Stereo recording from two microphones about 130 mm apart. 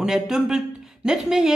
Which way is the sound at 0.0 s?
5° right (ahead or behind).